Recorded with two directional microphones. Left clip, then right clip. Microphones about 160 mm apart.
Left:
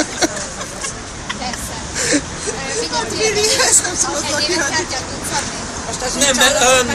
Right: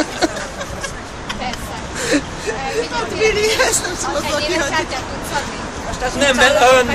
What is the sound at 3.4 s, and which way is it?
Speech, 5° left (ahead or behind).